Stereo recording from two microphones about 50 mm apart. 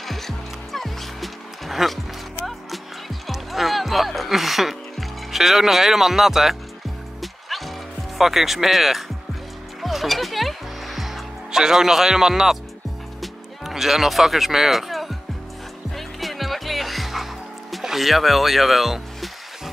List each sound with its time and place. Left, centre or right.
0.7 s music: centre
8.2 s speech: centre
9.8 s music: centre